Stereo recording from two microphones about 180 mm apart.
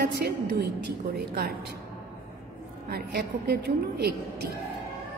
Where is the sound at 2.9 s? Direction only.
60° right (ahead or behind).